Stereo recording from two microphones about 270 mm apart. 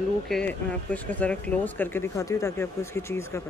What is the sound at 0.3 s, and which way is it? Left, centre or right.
Speech, centre.